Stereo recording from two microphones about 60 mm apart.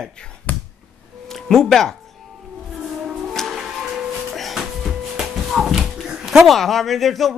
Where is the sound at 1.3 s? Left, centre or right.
Centre.